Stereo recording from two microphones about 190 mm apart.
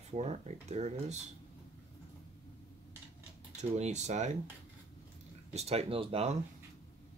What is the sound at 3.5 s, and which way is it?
Speech, 35° right (ahead or behind).